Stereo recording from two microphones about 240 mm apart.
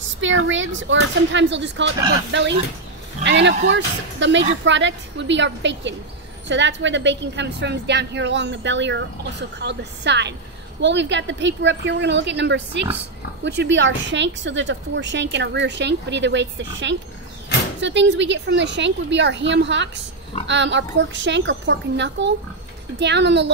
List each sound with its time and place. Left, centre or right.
0.2 s a woman's voice: right
3.3 s a woman's voice: right